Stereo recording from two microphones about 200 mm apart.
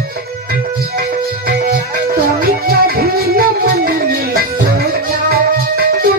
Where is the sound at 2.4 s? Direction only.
50° right (ahead or behind).